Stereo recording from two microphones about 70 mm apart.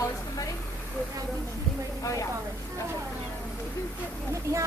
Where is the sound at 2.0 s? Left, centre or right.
Left.